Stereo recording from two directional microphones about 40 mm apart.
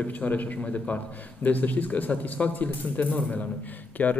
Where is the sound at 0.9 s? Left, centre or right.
Left.